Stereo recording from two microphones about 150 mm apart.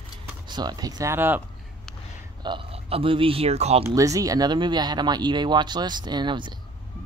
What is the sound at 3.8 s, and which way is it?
Speech, 20° right (ahead or behind).